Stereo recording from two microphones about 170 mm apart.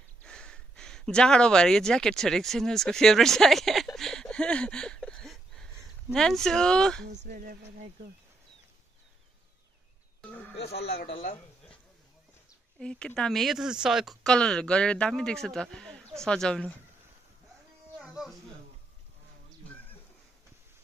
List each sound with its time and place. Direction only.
0.2 s a sound: 5° left (ahead or behind)
6.1 s speech: 5° left (ahead or behind)
7.2 s speech: 55° right (ahead or behind)
10.9 s speech: 80° left
12.7 s speech: 5° left (ahead or behind)
17.9 s a sound: centre (ahead or behind)